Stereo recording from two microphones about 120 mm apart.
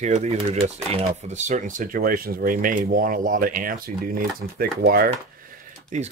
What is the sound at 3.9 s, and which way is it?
Speech, 90° right.